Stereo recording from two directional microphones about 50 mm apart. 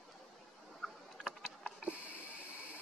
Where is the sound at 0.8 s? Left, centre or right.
Centre.